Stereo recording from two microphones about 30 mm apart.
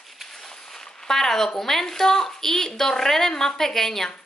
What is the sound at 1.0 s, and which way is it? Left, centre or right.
A woman's voice, centre.